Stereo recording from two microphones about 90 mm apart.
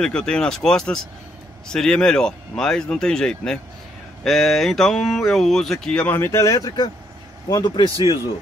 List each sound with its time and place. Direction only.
0.0 s speech: 10° left (ahead or behind)
6.1 s speech: 30° left (ahead or behind)
7.5 s a man's voice: 55° left (ahead or behind)